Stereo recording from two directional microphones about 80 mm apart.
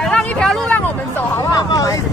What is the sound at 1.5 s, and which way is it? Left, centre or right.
Wind noise, left.